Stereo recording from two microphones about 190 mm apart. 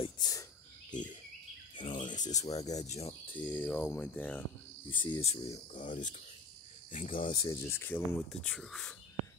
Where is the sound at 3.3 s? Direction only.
10° left (ahead or behind).